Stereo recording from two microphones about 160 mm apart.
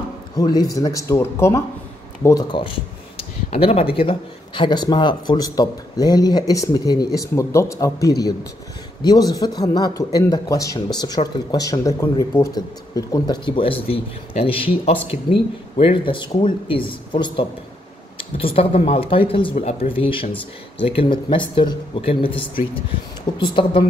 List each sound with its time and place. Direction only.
0.4 s speech: 20° left (ahead or behind)
3.4 s speech: 40° left (ahead or behind); by 10.8 s 20° left (ahead or behind)
11.2 s speech: 40° left (ahead or behind)
11.5 s speech: 20° left (ahead or behind)
13.5 s speech: 35° left (ahead or behind)